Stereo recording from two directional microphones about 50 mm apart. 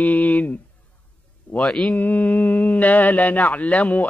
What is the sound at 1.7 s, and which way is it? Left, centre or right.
Mantra, centre.